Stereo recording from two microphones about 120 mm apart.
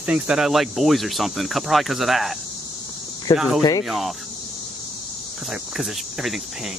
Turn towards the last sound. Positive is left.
turn(degrees=-5)  # may be behind; listen again after turning